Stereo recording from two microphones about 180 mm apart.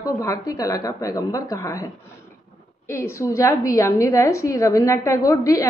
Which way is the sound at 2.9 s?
15° left (ahead or behind).